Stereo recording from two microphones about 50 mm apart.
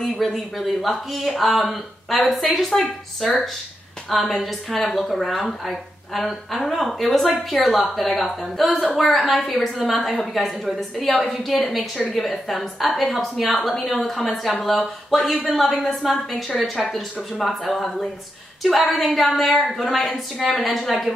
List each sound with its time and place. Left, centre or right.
0.0 s a woman's voice: centre